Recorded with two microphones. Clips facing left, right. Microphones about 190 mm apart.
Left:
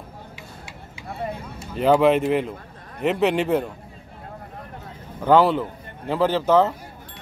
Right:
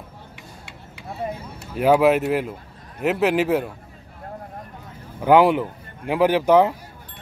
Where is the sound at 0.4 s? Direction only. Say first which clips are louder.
Left 2 dB; 65° right (ahead or behind).